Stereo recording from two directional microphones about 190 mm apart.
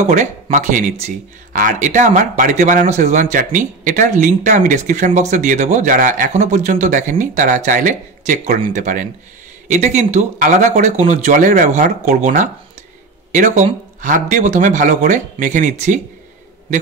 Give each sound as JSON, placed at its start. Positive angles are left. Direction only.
{"t": 0.1, "sound": "speech", "side_deg": -40}